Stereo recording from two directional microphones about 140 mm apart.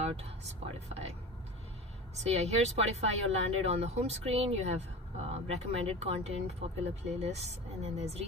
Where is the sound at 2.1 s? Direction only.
50° right (ahead or behind).